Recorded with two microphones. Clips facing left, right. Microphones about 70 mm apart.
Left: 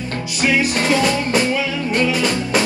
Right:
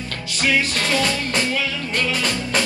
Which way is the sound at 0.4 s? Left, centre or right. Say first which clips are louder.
Left 3 dB; centre.